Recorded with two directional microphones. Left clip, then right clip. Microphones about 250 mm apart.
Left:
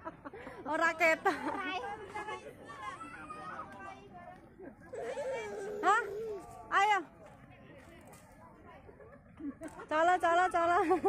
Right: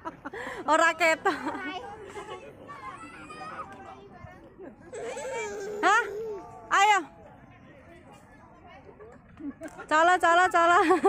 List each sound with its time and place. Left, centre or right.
0.3 s speech: right; by 1.6 s centre
1.6 s speech: centre
4.9 s laughter: right
5.8 s babbling: right
6.7 s a sound: right
9.8 s speech: right